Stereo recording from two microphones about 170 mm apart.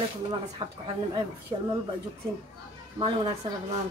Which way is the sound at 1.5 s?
30° right (ahead or behind).